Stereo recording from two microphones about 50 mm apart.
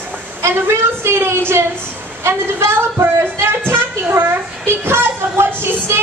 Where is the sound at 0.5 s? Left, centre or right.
Right.